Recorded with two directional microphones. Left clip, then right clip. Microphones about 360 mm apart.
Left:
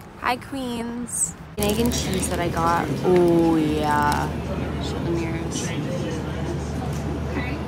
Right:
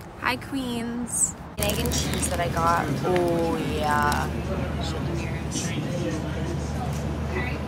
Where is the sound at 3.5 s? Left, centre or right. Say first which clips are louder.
Left 4 dB; centre.